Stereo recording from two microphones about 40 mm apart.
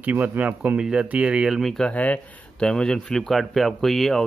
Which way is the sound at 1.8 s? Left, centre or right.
Left.